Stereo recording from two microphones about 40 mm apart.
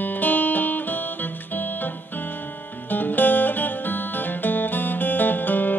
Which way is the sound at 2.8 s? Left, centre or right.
Left.